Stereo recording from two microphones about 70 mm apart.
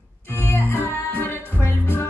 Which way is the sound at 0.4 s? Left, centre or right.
Left.